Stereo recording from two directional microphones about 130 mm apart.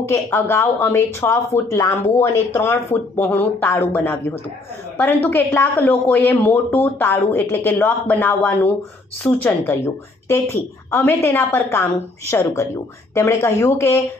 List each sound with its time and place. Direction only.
0.1 s speech: 20° left (ahead or behind)
5.3 s a woman's voice: 15° left (ahead or behind)